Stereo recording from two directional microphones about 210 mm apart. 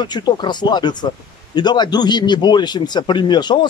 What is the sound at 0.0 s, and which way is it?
A man's voice, 20° left (ahead or behind).